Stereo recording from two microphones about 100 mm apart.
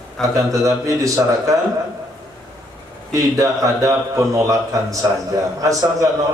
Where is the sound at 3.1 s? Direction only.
35° right (ahead or behind).